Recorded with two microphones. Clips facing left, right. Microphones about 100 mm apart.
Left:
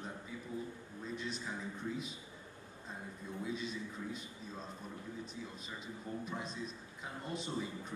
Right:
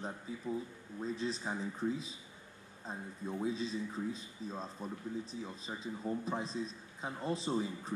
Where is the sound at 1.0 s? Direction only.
35° right (ahead or behind).